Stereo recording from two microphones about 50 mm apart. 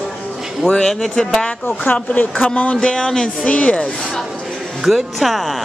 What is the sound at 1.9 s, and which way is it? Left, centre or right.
Speech, left.